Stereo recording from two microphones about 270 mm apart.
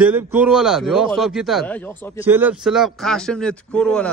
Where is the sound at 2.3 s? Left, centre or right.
Centre.